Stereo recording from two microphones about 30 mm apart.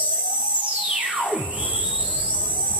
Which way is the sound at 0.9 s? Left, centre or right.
Right.